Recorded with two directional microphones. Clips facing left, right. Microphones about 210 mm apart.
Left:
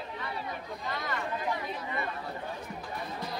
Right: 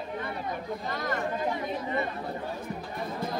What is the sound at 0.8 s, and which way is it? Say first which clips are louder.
Speech: right 3 dB; 45° right (ahead or behind).